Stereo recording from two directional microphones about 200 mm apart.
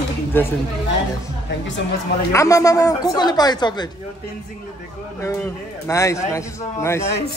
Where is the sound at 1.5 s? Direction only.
65° left (ahead or behind).